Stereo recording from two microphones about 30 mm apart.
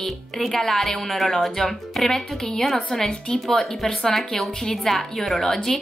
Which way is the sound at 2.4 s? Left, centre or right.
Centre.